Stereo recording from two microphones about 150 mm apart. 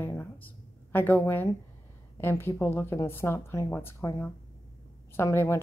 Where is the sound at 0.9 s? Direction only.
10° left (ahead or behind).